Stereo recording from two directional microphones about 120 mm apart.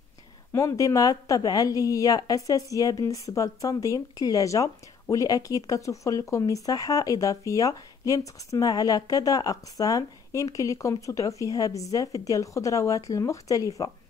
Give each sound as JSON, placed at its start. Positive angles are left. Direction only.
{"t": 0.5, "sound": "speech", "side_deg": 25}